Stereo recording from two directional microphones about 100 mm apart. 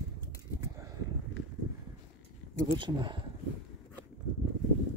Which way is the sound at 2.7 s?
50° right (ahead or behind).